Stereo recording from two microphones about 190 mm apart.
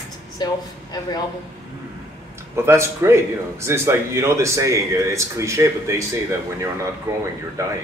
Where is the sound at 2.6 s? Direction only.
15° right (ahead or behind).